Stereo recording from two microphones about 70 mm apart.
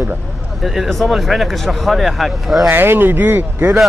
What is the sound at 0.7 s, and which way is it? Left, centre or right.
Speech, centre.